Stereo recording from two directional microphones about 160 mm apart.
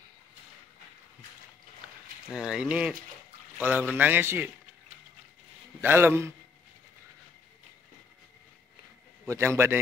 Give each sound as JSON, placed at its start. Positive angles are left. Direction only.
{"t": 2.3, "sound": "a man's voice", "side_deg": -5}
{"t": 5.8, "sound": "a man's voice", "side_deg": -15}
{"t": 9.3, "sound": "a man's voice", "side_deg": -15}